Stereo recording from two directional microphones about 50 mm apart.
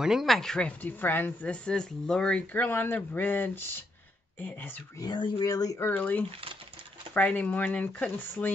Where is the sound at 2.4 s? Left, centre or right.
Left.